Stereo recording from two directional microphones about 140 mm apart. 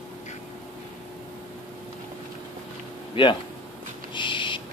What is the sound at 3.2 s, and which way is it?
Speech, 35° left (ahead or behind).